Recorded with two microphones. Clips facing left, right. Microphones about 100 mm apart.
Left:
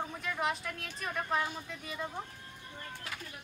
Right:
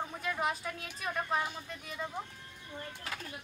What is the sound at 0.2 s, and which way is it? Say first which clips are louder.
Speech: right 1 dB; centre (ahead or behind).